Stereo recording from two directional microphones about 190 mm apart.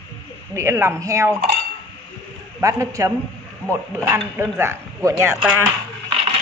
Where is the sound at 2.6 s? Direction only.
15° right (ahead or behind).